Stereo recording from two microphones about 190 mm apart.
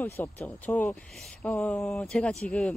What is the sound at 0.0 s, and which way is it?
Speech, 10° left (ahead or behind).